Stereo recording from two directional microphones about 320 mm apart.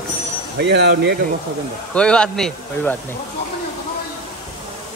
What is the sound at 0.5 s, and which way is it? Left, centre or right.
Speech, right.